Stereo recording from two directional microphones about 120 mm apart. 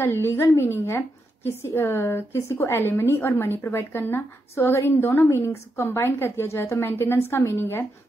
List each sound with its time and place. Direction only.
0.0 s a woman's voice: 20° left (ahead or behind)